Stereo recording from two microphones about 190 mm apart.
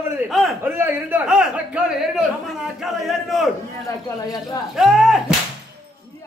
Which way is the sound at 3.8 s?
20° left (ahead or behind).